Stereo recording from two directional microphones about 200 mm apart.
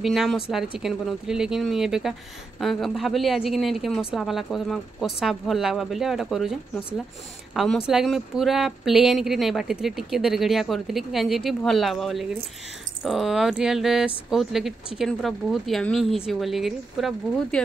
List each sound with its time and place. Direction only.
0.0 s speech: centre (ahead or behind)